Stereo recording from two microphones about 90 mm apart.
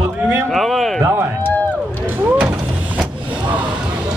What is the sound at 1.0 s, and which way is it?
Speech, 25° right (ahead or behind).